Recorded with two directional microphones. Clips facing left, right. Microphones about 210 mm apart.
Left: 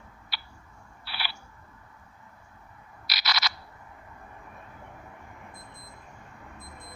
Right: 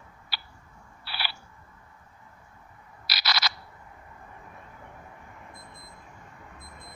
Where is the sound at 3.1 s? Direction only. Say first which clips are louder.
Right 1 dB; 30° right (ahead or behind).